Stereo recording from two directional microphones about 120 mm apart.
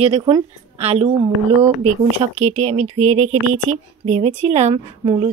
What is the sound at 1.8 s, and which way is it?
Speech, 75° right (ahead or behind).